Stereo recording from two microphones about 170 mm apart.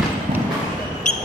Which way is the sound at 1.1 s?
45° left (ahead or behind).